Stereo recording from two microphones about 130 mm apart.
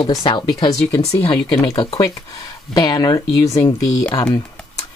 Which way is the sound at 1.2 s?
45° left (ahead or behind).